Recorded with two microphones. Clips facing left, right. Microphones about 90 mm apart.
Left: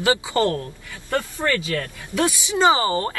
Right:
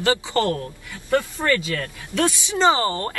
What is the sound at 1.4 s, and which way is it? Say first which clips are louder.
Speech: even; 10° right (ahead or behind).